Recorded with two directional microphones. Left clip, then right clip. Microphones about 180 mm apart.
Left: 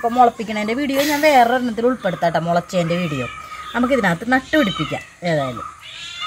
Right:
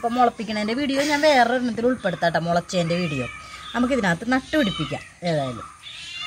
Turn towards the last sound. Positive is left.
turn(degrees=5)  # may be behind; listen again after turning